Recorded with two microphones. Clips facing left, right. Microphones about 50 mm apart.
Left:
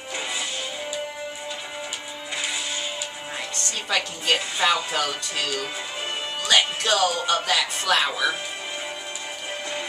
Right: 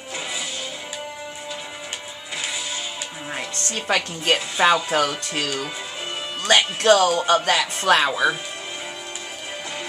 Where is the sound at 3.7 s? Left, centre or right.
Right.